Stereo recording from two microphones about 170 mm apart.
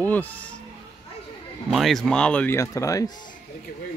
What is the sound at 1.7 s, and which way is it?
Speech, centre (ahead or behind).